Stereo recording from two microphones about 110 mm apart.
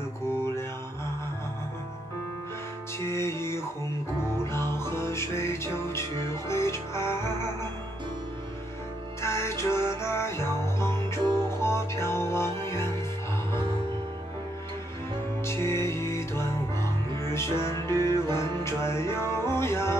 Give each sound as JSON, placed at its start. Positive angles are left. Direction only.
{"t": 0.3, "sound": "mantra", "side_deg": 25}
{"t": 3.0, "sound": "music", "side_deg": 25}
{"t": 9.2, "sound": "music", "side_deg": 25}
{"t": 15.4, "sound": "music", "side_deg": 25}